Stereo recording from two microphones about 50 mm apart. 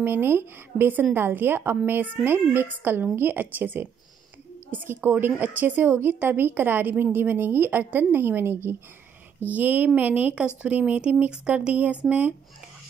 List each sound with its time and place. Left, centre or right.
0.0 s a woman's voice: right
9.4 s a woman's voice: right
10.3 s speech: right